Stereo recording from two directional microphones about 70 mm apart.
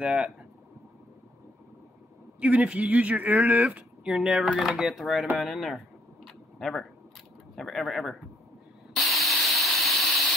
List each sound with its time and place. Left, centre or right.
0.0 s speech: centre
2.4 s speech: centre
4.1 s speech: centre
6.2 s a sound: centre
7.5 s speech: centre
8.9 s a sound: centre